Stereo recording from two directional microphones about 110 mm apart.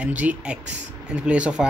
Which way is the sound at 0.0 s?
15° right (ahead or behind).